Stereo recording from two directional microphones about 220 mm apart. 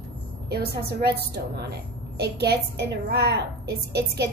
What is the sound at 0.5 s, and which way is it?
A woman's voice, 45° right (ahead or behind).